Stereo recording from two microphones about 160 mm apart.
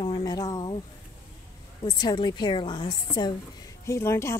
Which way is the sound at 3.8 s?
15° left (ahead or behind).